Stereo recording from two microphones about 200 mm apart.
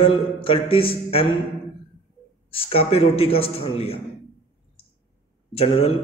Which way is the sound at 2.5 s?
30° left (ahead or behind).